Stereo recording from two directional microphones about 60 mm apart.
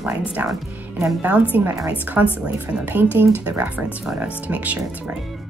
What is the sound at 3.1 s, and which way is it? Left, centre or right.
A woman's voice, right.